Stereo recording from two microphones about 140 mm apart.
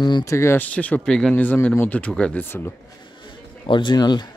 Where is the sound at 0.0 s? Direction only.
25° left (ahead or behind).